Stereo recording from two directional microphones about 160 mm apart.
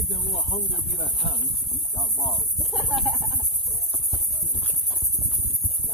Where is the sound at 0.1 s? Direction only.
45° left (ahead or behind).